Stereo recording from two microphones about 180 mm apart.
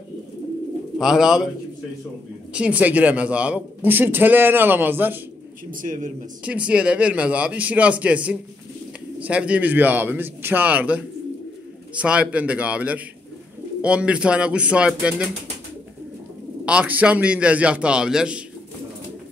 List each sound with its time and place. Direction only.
0.9 s speech: centre (ahead or behind)
2.5 s a man's voice: 5° right (ahead or behind)
5.7 s a man's voice: 50° right (ahead or behind)
6.4 s a man's voice: 5° right (ahead or behind)
16.6 s a man's voice: 5° right (ahead or behind)